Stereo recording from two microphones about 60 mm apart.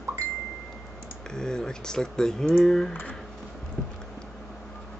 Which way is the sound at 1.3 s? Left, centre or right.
Centre.